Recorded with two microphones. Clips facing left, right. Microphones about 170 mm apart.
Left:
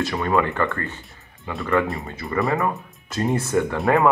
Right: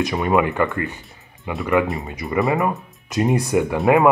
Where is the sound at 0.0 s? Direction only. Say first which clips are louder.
Right 3 dB; 15° right (ahead or behind).